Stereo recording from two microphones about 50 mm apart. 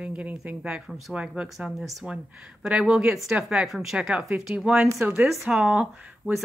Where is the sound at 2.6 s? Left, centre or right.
Centre.